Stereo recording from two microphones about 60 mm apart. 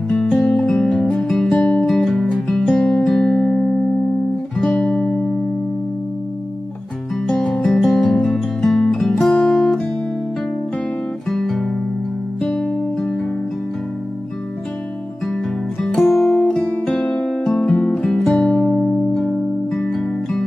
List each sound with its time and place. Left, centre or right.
0.1 s music: centre
1.5 s music: left
1.9 s music: centre
7.4 s music: centre
7.7 s music: centre
11.2 s guitar: centre
12.4 s music: centre
16.0 s music: centre
16.3 s music: centre
17.0 s music: left
17.3 s music: centre